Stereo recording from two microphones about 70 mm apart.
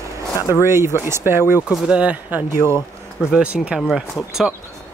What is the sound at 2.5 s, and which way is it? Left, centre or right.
Speech, right.